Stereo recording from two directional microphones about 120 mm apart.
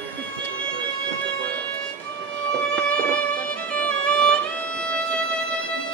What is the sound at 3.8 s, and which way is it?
Music, 10° left (ahead or behind).